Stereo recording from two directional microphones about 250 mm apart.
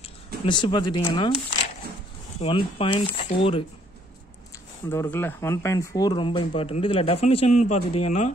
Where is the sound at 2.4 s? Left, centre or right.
Left.